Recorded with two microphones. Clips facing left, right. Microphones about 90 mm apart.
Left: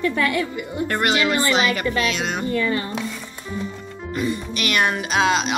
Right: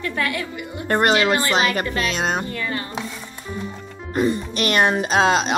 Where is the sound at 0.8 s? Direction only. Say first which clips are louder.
Right 4 dB; 35° right (ahead or behind).